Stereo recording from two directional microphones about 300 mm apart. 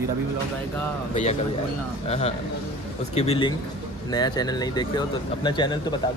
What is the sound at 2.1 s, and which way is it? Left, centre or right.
Speech, left.